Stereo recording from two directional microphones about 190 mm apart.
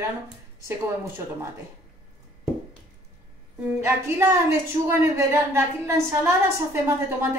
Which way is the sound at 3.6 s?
10° right (ahead or behind).